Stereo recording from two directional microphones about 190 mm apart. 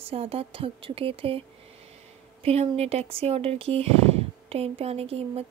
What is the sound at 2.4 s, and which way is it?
Speech, 30° right (ahead or behind).